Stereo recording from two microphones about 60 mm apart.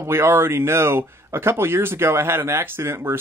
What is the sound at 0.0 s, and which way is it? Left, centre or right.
Speech, right.